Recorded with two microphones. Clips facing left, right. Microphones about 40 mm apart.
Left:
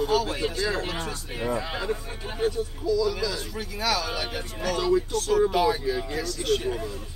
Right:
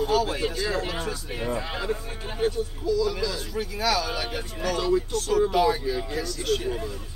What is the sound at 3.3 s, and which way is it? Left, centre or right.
Speech, centre.